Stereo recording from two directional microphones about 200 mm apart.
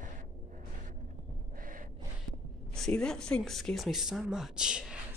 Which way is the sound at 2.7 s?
5° left (ahead or behind).